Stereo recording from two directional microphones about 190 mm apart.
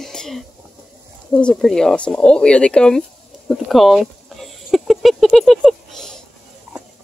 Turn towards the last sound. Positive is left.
turn(degrees=0)  # may be behind; listen again after turning